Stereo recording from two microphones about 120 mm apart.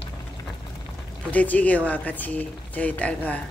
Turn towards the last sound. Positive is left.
turn(degrees=10)  # may be behind; listen again after turning